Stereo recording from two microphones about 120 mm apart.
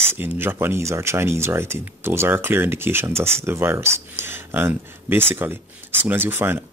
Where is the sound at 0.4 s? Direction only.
20° right (ahead or behind).